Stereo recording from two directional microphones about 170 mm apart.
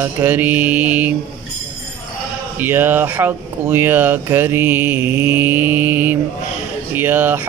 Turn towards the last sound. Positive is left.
turn(degrees=-10)  # may be behind; listen again after turning